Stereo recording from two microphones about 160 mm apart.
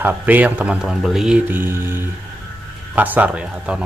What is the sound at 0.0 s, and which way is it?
Speech, 10° right (ahead or behind).